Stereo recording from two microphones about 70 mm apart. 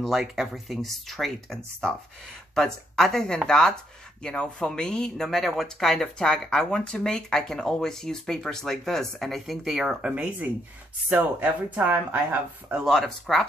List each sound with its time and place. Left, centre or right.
0.0 s speech: centre
10.0 s speech: centre
12.8 s speech: centre